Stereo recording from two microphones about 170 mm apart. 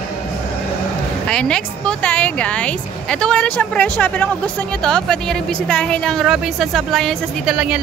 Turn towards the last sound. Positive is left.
turn(degrees=-5)  # may be behind; listen again after turning